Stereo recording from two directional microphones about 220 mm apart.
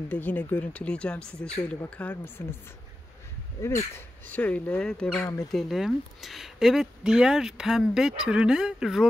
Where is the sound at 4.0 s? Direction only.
5° left (ahead or behind).